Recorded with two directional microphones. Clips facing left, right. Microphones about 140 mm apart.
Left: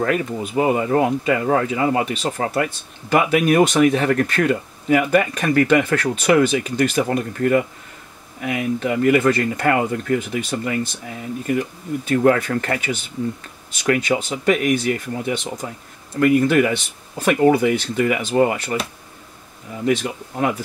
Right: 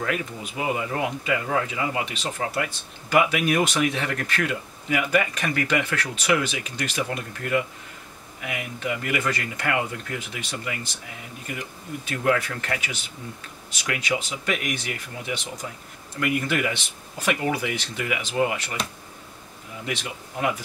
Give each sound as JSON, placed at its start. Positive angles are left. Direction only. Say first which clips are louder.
{"t": 0.0, "sound": "speech", "louder": "left 8 dB", "side_deg": 45}
{"t": 12.2, "sound": "speech", "louder": "left 7 dB", "side_deg": 45}
{"t": 19.9, "sound": "speech", "louder": "left 12 dB", "side_deg": 45}